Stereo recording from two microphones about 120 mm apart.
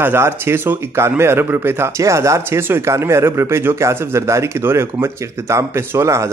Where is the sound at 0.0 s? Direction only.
20° right (ahead or behind).